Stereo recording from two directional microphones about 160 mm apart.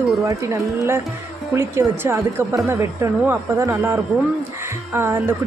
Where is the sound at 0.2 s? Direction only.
20° right (ahead or behind).